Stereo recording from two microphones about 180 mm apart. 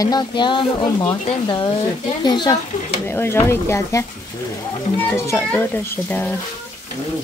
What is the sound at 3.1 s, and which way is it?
Speech, 15° left (ahead or behind).